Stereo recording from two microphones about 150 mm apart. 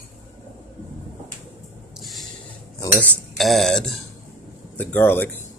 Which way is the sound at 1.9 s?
Centre (ahead or behind).